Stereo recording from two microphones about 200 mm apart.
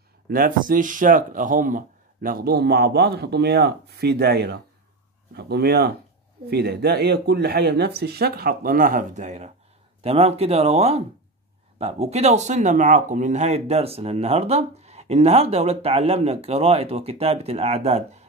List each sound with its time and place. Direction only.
0.3 s speech: 45° right (ahead or behind)